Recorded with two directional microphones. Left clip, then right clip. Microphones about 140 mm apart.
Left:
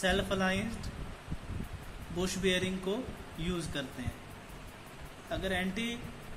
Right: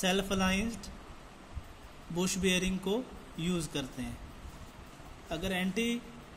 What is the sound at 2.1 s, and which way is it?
Speech, 50° right (ahead or behind).